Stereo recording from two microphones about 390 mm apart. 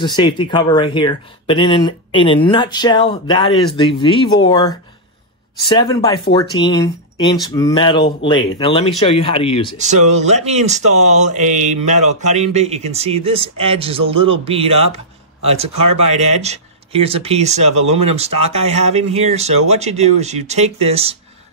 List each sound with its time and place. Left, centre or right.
0.0 s speech: centre
9.8 s speech: centre